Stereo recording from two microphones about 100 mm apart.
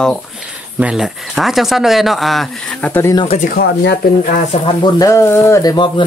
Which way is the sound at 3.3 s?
90° left.